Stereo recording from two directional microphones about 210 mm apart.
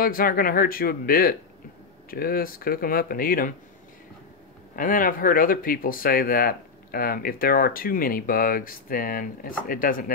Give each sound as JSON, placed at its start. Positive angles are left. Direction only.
{"t": 0.0, "sound": "speech", "side_deg": 45}
{"t": 4.7, "sound": "speech", "side_deg": 40}